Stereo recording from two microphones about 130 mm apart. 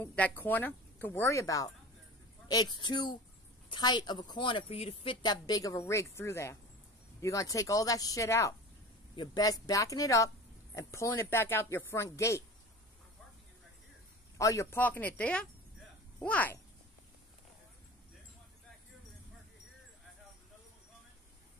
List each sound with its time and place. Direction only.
0.0 s a woman's voice: 10° left (ahead or behind); by 4.6 s 40° left (ahead or behind)
4.6 s speech: 55° left (ahead or behind); by 8.5 s 25° left (ahead or behind)
9.1 s speech: 35° left (ahead or behind)
14.4 s speech: 25° left (ahead or behind)